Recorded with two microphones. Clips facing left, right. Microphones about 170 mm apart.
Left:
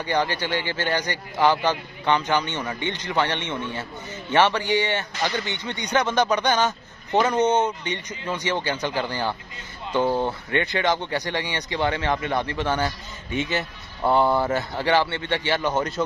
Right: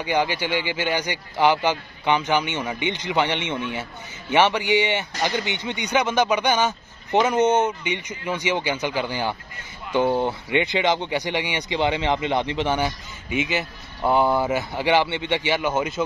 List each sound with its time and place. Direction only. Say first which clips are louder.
0.0 s speech: right 1 dB; 10° right (ahead or behind)